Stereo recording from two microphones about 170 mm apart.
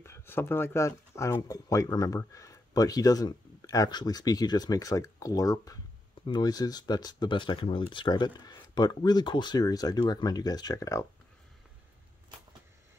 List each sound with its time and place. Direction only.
0.0 s speech: 15° left (ahead or behind)